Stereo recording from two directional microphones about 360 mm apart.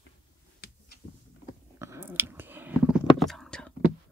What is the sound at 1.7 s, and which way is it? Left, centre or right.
Chewing, centre.